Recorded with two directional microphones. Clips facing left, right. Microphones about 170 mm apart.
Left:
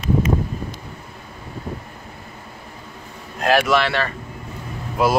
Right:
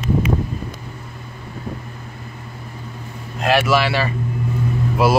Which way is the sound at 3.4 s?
5° right (ahead or behind).